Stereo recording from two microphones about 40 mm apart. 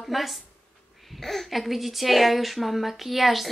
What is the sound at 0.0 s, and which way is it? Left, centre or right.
Speech, centre.